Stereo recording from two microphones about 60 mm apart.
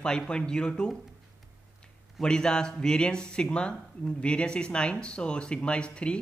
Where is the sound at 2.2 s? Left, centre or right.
Centre.